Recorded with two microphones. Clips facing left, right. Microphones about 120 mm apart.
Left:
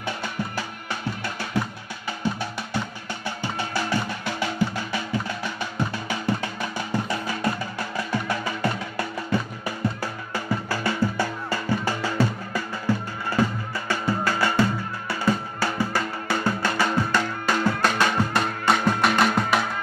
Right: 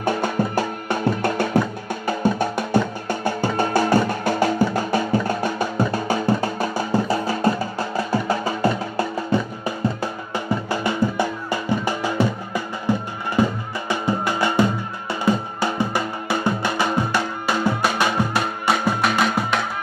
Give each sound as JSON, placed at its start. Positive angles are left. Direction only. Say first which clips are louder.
{"t": 0.0, "sound": "music", "louder": "right 9 dB", "side_deg": -50}